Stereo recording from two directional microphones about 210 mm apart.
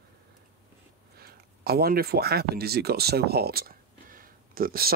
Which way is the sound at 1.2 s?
45° right (ahead or behind).